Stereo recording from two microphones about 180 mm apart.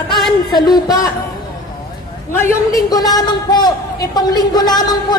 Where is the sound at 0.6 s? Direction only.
20° left (ahead or behind).